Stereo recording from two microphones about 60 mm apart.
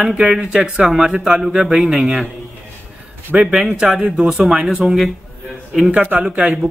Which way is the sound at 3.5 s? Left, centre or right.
Centre.